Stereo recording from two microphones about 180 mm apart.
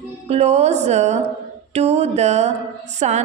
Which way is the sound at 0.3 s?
35° right (ahead or behind).